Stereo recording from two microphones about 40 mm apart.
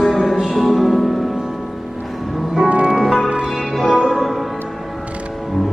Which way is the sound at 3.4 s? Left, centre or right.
Centre.